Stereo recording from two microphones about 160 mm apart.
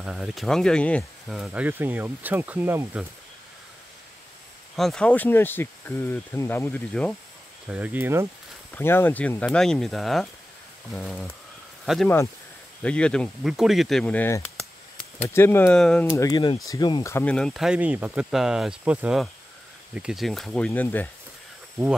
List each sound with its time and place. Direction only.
0.0 s speech: 5° right (ahead or behind)
1.3 s speech: 5° right (ahead or behind)
4.7 s speech: 5° left (ahead or behind)
7.6 s speech: 10° right (ahead or behind)
8.7 s speech: 15° left (ahead or behind)
16.2 s speech: 25° left (ahead or behind)
17.1 s speech: 10° left (ahead or behind)